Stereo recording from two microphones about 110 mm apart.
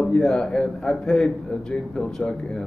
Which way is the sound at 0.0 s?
5° left (ahead or behind).